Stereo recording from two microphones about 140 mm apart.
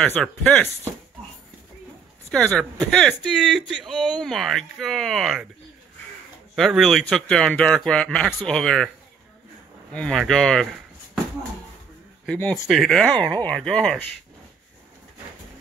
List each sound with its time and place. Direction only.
0.0 s speech: 10° left (ahead or behind)
2.3 s speech: 5° left (ahead or behind)
6.5 s speech: centre (ahead or behind)
9.9 s speech: 5° left (ahead or behind)
12.4 s speech: 15° left (ahead or behind)
12.6 s speech: centre (ahead or behind)